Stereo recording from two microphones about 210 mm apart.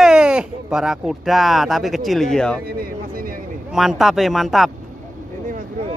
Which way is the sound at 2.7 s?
45° right (ahead or behind).